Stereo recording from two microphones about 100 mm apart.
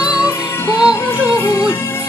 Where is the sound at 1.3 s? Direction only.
25° left (ahead or behind).